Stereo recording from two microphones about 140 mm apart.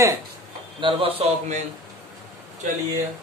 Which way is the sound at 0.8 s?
40° right (ahead or behind).